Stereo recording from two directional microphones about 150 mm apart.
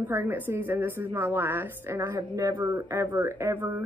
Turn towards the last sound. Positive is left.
turn(degrees=-15)  # may be behind; listen again after turning